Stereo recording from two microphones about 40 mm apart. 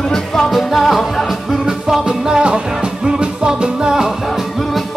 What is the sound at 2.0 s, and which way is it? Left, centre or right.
Music, centre.